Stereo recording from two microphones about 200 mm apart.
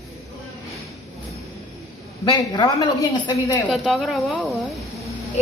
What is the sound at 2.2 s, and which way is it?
Speech, 20° left (ahead or behind).